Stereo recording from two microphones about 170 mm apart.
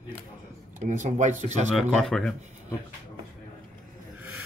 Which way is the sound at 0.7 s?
45° right (ahead or behind).